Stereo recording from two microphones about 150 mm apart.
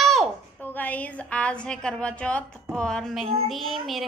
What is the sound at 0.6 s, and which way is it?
A woman's voice, 10° left (ahead or behind).